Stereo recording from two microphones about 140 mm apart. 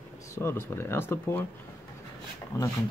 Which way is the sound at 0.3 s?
20° left (ahead or behind).